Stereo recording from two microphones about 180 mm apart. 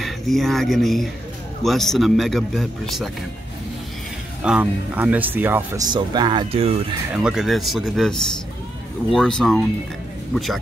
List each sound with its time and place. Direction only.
0.0 s speech: centre (ahead or behind)
4.4 s speech: 5° right (ahead or behind)
5.9 s speech: 25° right (ahead or behind)
7.2 s speech: centre (ahead or behind)